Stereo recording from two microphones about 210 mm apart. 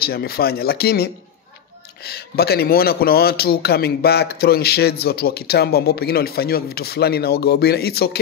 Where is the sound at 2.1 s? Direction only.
50° left (ahead or behind).